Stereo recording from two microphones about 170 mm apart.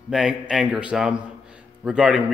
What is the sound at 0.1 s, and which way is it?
A man's voice, 5° right (ahead or behind).